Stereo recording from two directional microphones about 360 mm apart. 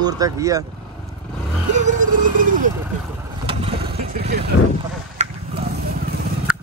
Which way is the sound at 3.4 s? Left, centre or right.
Centre.